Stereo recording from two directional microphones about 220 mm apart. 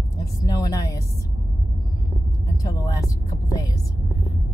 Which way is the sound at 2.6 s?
15° left (ahead or behind).